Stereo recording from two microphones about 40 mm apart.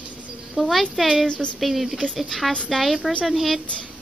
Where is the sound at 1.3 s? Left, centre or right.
Left.